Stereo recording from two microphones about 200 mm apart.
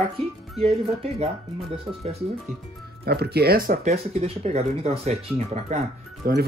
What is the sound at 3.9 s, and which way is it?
Speech, 30° right (ahead or behind).